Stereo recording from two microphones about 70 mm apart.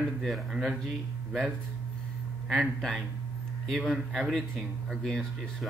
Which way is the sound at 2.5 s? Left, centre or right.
Centre.